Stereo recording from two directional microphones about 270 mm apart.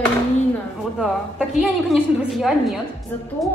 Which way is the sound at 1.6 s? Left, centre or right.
Centre.